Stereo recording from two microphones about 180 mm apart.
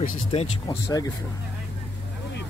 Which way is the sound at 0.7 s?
20° left (ahead or behind).